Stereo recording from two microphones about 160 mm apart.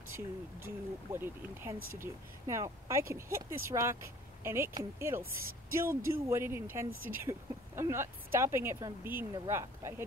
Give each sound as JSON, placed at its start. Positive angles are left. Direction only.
{"t": 0.7, "sound": "speech", "side_deg": -15}